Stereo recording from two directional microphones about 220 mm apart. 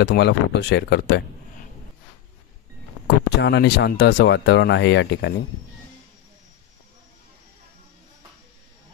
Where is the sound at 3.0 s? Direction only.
50° left (ahead or behind).